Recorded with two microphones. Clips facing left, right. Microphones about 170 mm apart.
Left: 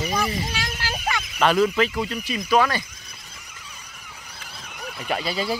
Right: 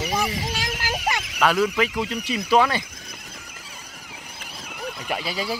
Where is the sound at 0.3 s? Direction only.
90° right.